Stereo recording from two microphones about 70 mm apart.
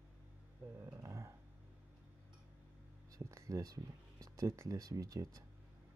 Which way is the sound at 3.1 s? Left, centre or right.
Right.